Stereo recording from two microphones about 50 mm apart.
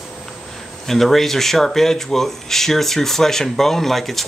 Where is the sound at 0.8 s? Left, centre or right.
Centre.